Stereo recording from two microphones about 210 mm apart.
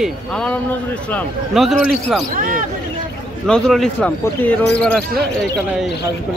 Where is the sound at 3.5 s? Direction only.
5° left (ahead or behind).